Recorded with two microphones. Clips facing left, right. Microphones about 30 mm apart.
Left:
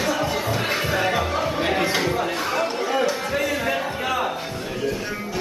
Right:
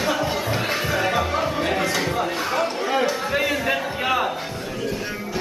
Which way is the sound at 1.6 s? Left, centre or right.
Centre.